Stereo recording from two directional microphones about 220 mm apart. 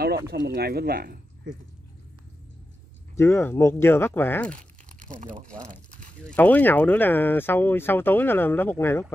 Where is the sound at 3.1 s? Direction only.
10° left (ahead or behind).